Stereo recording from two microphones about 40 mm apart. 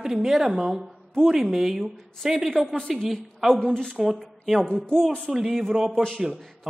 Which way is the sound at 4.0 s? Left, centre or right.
Centre.